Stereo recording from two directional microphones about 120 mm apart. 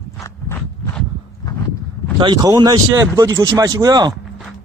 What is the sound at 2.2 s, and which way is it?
Speech, 40° right (ahead or behind).